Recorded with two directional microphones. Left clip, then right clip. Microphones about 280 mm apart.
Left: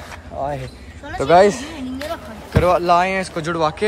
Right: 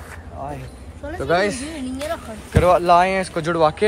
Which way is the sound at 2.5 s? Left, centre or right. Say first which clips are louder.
Right 1 dB; centre.